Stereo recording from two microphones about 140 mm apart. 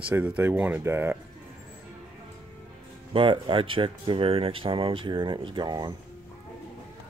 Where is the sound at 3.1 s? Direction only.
40° right (ahead or behind).